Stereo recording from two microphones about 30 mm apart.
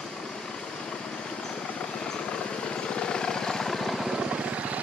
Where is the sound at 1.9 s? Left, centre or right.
Left; by 4.0 s centre.